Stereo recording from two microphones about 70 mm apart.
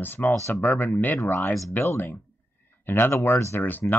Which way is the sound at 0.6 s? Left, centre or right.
Left.